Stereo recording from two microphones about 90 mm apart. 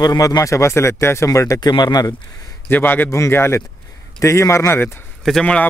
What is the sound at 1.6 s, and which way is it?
Speech, 55° left (ahead or behind).